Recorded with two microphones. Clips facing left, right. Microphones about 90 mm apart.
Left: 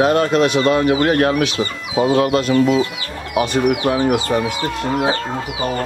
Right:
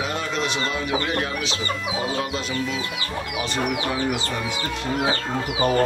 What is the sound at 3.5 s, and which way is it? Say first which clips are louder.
Speech: left 7 dB; 70° left (ahead or behind).